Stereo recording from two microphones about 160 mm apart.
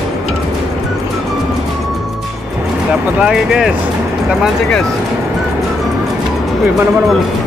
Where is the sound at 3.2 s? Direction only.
5° right (ahead or behind).